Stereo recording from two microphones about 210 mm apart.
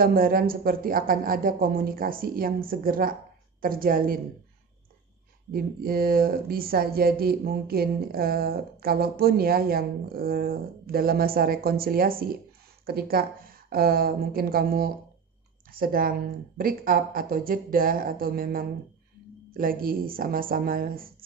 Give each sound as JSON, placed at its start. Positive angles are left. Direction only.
{"t": 0.0, "sound": "speech", "side_deg": -45}
{"t": 5.5, "sound": "speech", "side_deg": -45}